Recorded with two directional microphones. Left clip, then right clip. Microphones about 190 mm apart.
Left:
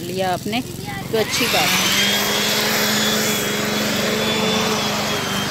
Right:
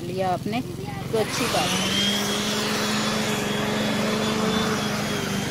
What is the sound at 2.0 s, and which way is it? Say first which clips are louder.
Vehicle: left 6 dB; 45° left (ahead or behind).